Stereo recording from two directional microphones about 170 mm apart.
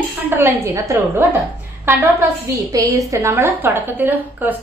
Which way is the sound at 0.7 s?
15° right (ahead or behind).